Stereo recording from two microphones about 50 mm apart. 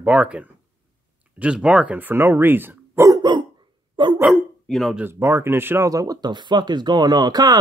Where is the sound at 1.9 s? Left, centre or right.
Right.